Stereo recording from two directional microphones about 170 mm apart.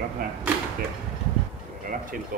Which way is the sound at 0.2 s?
55° right (ahead or behind).